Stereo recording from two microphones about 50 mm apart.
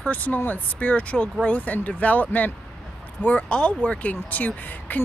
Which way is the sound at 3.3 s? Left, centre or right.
Centre.